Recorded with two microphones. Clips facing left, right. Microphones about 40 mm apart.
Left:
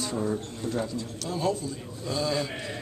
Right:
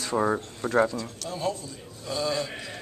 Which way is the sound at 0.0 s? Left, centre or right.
Right.